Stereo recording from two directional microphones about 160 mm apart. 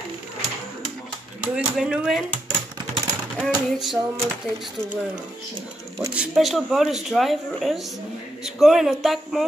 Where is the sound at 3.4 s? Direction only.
5° right (ahead or behind).